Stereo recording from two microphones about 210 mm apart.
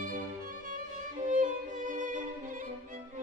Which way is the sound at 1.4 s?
40° right (ahead or behind).